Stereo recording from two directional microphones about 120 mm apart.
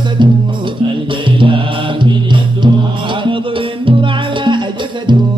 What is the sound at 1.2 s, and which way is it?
Mantra, 45° right (ahead or behind).